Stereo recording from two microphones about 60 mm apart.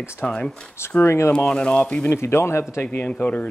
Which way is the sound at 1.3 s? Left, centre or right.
Centre.